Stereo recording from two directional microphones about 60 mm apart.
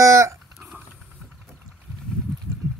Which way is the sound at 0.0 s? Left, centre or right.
Right.